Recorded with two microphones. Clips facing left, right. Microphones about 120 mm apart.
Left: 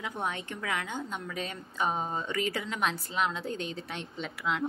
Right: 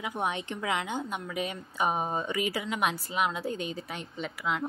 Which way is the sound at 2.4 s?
5° right (ahead or behind).